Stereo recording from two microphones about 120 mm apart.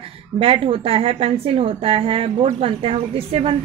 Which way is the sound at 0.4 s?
50° right (ahead or behind).